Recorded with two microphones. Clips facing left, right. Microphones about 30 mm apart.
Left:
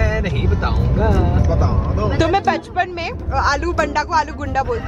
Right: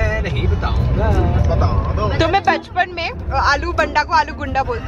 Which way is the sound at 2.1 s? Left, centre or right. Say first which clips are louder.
Right 1 dB; centre.